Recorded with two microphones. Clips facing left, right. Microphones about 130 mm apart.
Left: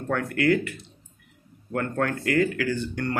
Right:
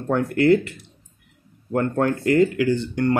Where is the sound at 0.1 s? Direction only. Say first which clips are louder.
Right 6 dB; 25° right (ahead or behind).